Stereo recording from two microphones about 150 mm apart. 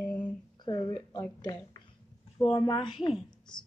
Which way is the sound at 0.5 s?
30° left (ahead or behind).